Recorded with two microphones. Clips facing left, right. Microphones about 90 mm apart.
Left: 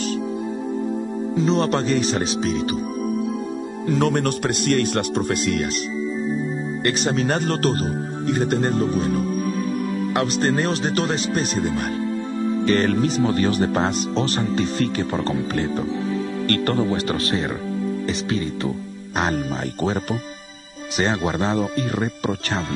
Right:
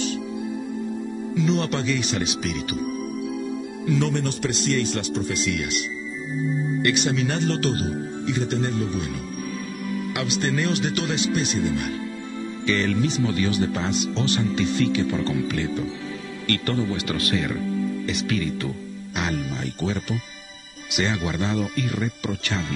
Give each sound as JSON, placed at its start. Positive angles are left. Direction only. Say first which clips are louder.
{"t": 1.3, "sound": "speech", "louder": "left 4 dB", "side_deg": 35}
{"t": 3.8, "sound": "speech", "louder": "left 4 dB", "side_deg": 45}
{"t": 6.8, "sound": "speech", "louder": "left 3 dB", "side_deg": 40}
{"t": 19.1, "sound": "speech", "louder": "left 5 dB", "side_deg": 40}
{"t": 21.0, "sound": "speech", "louder": "left 4 dB", "side_deg": 35}